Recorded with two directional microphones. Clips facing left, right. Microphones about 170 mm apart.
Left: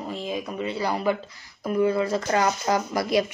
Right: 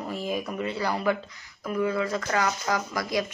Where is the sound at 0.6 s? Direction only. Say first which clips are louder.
Left 2 dB; 20° left (ahead or behind).